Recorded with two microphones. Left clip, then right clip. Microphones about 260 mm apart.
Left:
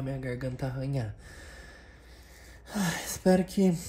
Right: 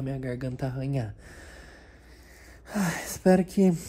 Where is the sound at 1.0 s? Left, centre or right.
Centre.